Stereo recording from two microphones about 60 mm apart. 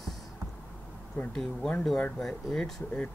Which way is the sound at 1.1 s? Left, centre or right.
Centre.